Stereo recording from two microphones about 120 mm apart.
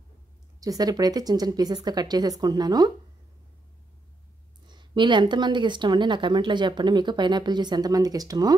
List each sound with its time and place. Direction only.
0.6 s speech: 30° right (ahead or behind)
4.6 s speech: 40° right (ahead or behind)